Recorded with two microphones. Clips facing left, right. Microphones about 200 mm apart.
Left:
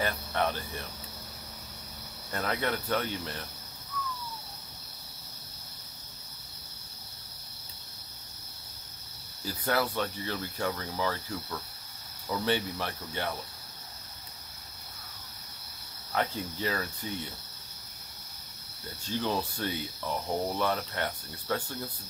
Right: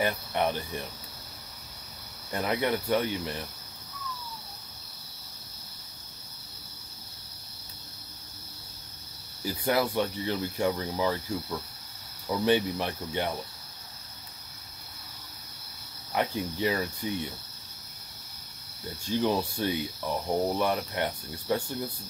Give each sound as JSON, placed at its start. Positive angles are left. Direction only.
{"t": 0.0, "sound": "speech", "side_deg": -15}
{"t": 2.3, "sound": "speech", "side_deg": -15}
{"t": 9.4, "sound": "speech", "side_deg": -15}
{"t": 16.1, "sound": "speech", "side_deg": -15}
{"t": 19.0, "sound": "speech", "side_deg": -15}